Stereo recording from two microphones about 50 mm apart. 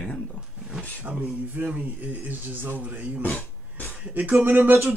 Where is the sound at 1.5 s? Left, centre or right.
Right.